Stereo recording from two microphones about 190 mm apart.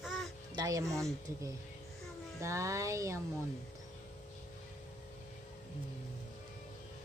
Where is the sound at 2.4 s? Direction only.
15° right (ahead or behind).